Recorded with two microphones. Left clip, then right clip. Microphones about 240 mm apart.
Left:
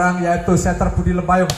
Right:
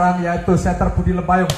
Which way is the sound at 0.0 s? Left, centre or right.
Left.